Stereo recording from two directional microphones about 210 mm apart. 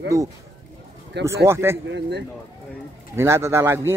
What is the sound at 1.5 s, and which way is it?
Speech, 10° right (ahead or behind).